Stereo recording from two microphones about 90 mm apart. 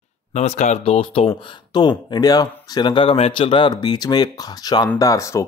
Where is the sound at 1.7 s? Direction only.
55° left (ahead or behind).